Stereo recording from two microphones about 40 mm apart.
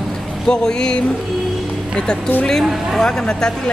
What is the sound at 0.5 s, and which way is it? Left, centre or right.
Speech, left.